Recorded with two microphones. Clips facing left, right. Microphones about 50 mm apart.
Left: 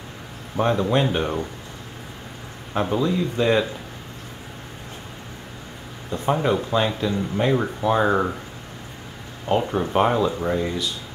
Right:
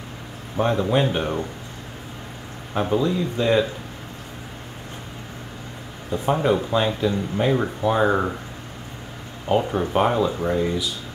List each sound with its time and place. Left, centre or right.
0.6 s speech: centre
2.7 s speech: centre
6.1 s speech: centre
9.5 s speech: centre